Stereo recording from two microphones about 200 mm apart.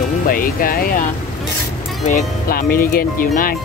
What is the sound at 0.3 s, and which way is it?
Speech, 45° left (ahead or behind).